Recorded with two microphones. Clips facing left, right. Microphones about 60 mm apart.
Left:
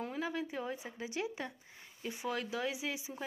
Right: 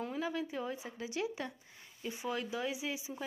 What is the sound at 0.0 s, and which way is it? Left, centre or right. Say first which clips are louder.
Speech: right 1 dB; left.